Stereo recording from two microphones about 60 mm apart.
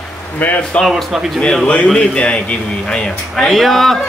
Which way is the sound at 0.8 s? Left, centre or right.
Centre.